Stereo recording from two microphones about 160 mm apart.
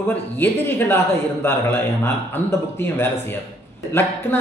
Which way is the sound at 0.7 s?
15° left (ahead or behind).